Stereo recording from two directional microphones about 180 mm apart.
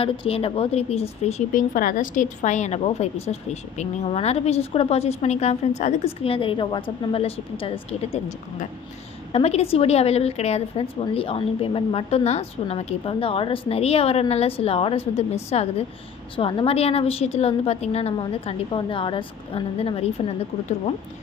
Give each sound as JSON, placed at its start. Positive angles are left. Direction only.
{"t": 0.0, "sound": "a woman's voice", "side_deg": 30}
{"t": 1.3, "sound": "a woman's voice", "side_deg": 50}